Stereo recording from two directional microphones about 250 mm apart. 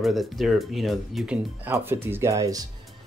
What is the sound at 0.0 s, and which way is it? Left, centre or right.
Speech, centre.